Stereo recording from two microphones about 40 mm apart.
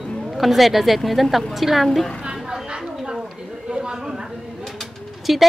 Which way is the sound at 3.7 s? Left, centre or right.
Right.